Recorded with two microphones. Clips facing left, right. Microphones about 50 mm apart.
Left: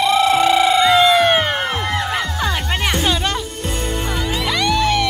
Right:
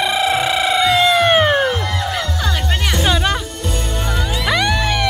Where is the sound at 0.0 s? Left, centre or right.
Centre.